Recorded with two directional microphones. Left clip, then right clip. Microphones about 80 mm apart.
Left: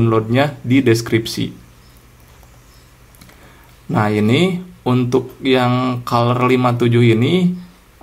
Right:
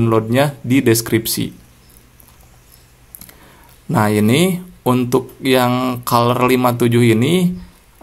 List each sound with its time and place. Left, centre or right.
0.1 s speech: right
3.9 s speech: right